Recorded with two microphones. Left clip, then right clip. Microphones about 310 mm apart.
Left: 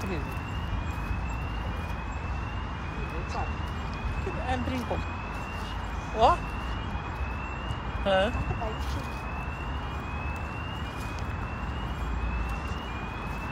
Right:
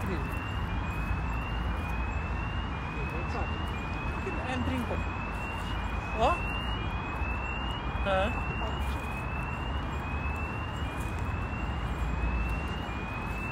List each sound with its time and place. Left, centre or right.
6.2 s speech: left
8.0 s speech: left